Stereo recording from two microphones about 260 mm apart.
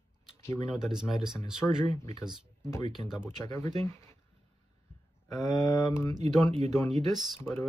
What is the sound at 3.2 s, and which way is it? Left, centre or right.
Speech, centre.